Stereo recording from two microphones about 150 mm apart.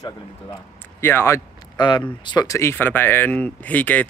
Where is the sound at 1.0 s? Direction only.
15° left (ahead or behind).